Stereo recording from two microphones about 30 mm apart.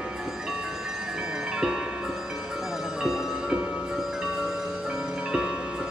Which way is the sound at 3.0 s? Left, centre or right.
Centre.